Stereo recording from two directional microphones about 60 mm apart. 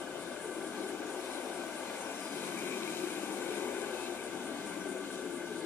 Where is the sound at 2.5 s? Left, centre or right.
Left.